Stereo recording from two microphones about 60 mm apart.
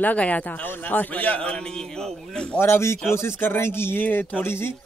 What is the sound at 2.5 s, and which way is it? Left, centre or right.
A man's voice, left.